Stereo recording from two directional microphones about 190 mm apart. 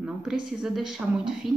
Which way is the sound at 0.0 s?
5° right (ahead or behind).